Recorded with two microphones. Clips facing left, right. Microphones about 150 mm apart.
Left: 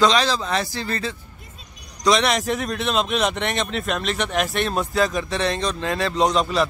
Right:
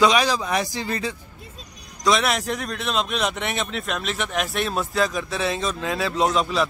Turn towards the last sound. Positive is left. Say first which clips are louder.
# left 2 dB
turn(degrees=0)  # may be behind; listen again after turning